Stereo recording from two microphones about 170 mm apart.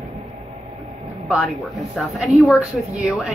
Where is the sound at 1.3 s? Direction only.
Centre (ahead or behind).